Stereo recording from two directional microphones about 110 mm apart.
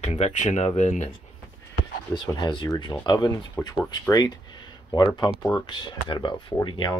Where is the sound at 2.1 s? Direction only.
45° left (ahead or behind).